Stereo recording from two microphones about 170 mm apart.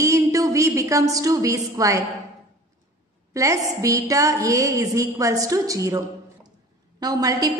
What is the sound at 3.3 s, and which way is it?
A woman's voice, 20° right (ahead or behind).